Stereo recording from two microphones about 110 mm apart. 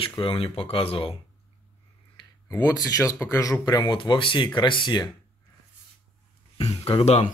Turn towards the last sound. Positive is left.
turn(degrees=70)  # may be behind; listen again after turning